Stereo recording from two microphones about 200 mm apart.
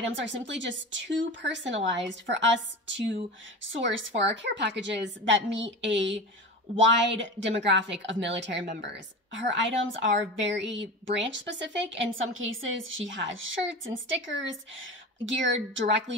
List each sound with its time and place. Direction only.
0.0 s a woman's voice: 65° right (ahead or behind)
3.7 s a woman's voice: 70° right (ahead or behind)